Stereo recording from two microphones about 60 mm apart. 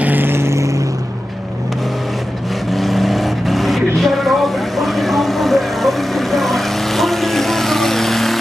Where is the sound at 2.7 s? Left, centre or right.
Centre.